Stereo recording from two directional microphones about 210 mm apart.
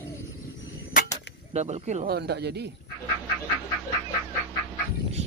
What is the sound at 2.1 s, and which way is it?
Speech, 50° right (ahead or behind).